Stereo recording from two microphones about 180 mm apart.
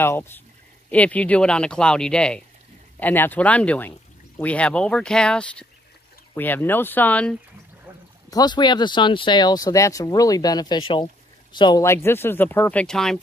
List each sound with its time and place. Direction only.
0.0 s speech: 15° left (ahead or behind)
8.3 s speech: 20° left (ahead or behind)
11.8 s speech: 15° left (ahead or behind)